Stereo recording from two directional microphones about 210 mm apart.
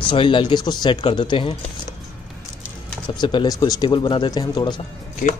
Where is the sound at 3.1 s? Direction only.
20° left (ahead or behind).